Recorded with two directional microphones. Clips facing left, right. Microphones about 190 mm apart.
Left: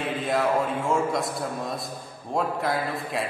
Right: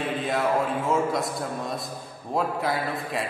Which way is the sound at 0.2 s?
Centre (ahead or behind).